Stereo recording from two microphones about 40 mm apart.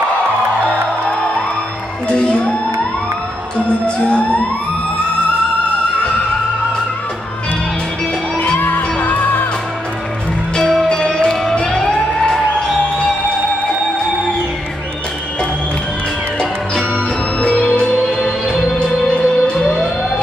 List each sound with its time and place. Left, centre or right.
2.0 s music: left
3.5 s music: left
8.5 s music: left
10.6 s music: centre
10.9 s music: left
11.9 s emergency vehicle: centre
17.5 s music: centre
18.8 s music: left